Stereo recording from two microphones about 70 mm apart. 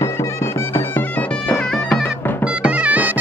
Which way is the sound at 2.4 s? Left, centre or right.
Centre.